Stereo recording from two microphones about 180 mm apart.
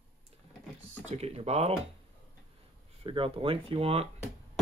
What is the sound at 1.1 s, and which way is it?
Speech, 35° right (ahead or behind).